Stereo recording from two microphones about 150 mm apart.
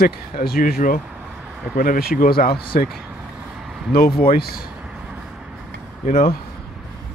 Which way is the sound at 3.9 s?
90° left.